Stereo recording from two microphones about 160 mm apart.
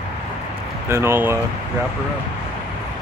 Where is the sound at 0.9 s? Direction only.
15° right (ahead or behind).